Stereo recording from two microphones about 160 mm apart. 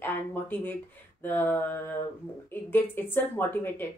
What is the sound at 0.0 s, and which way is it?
Speech, 10° left (ahead or behind).